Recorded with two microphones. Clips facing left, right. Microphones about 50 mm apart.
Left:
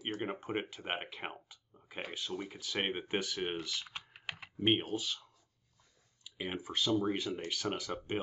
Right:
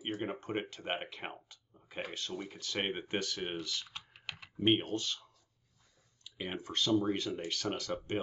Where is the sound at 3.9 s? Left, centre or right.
Left.